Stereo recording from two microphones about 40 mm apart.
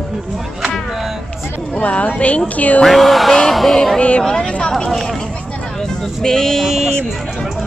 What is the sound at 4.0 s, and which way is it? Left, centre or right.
Speech, left.